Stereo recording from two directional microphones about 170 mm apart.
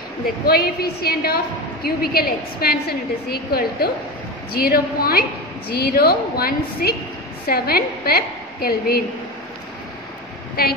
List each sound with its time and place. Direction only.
0.5 s a woman's voice: 65° left (ahead or behind)